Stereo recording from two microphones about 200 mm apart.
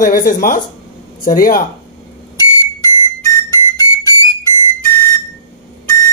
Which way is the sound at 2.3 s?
15° left (ahead or behind).